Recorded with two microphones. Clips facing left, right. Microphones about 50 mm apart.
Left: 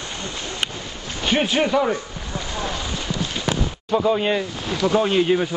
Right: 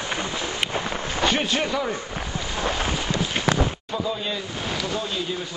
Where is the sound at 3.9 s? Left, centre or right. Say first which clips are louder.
Left 8 dB; left.